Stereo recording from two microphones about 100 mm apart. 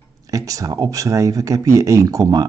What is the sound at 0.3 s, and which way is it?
Speech, 35° right (ahead or behind).